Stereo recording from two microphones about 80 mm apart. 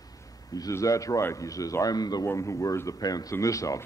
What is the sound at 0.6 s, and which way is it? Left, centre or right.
Speech, left.